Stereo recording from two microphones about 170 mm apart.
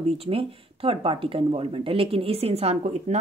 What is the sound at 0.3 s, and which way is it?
Speech, 35° right (ahead or behind).